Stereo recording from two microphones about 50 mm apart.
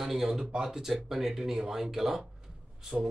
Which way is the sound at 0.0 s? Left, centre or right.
Centre.